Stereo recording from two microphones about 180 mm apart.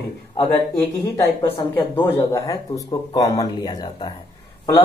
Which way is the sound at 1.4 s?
10° left (ahead or behind).